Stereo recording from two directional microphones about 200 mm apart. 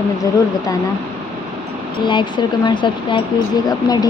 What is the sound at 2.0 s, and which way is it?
Speech, 25° left (ahead or behind).